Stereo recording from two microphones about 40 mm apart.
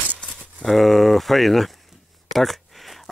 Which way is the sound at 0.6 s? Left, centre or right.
Centre.